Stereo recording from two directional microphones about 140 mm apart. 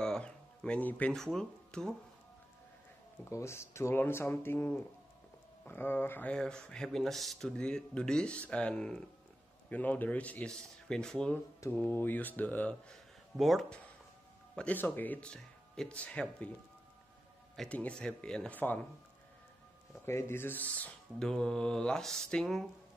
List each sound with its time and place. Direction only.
0.0 s music: 5° left (ahead or behind)
3.3 s speech: 20° left (ahead or behind)
17.6 s speech: 10° left (ahead or behind)
20.1 s speech: 20° left (ahead or behind); by 22.7 s 5° left (ahead or behind)